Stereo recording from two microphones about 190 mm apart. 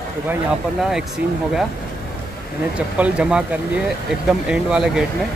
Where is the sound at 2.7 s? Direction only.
5° right (ahead or behind).